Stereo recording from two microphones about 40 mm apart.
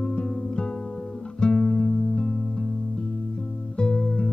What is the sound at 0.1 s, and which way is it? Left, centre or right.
Music, left.